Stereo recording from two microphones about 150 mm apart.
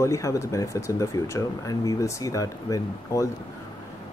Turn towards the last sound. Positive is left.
turn(degrees=20)  # may be behind; listen again after turning